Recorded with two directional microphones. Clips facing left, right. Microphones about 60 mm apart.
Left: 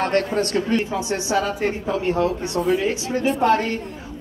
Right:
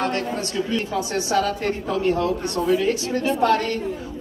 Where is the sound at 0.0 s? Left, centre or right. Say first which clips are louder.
Left 4 dB; left.